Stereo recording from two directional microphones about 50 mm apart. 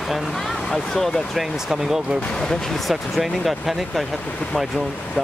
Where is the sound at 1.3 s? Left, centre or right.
Centre.